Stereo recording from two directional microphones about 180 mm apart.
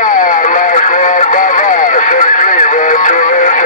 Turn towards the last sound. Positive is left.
turn(degrees=45)  # may be behind; listen again after turning